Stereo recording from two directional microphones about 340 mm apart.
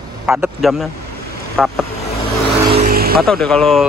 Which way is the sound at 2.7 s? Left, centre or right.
Right.